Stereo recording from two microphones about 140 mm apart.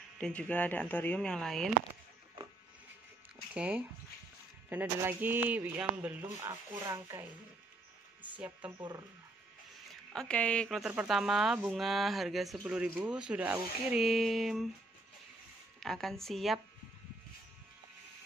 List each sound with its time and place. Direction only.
0.2 s speech: 10° left (ahead or behind)
3.5 s a sound: 10° right (ahead or behind)
6.4 s speech: 20° right (ahead or behind)
10.1 s speech: 5° left (ahead or behind); by 14.0 s 10° right (ahead or behind)
14.0 s speech: centre (ahead or behind)
15.8 s speech: centre (ahead or behind)